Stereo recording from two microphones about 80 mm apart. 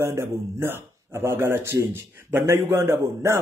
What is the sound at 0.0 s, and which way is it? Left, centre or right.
A man's voice, right.